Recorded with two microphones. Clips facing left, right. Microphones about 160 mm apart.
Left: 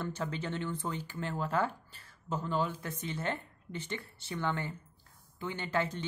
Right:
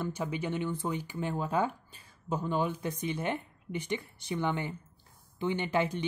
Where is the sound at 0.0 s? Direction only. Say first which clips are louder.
Right 3 dB; 10° right (ahead or behind).